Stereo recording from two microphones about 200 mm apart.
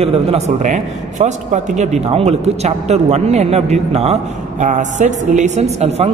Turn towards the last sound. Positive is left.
turn(degrees=-35)  # may be behind; listen again after turning